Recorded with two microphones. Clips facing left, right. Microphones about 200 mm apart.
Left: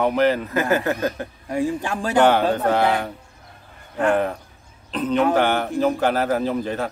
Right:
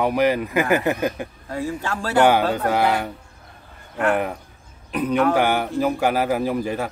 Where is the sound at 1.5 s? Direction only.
15° left (ahead or behind).